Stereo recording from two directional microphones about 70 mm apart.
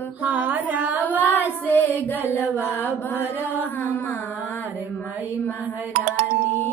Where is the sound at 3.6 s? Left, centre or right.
Left.